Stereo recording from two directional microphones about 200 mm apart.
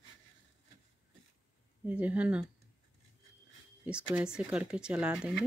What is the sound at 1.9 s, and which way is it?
Speech, 10° right (ahead or behind).